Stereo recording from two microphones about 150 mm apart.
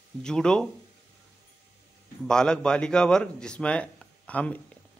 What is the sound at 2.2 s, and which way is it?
A man's voice, 5° left (ahead or behind).